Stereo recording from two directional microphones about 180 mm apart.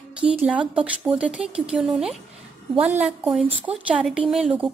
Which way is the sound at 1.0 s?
5° right (ahead or behind).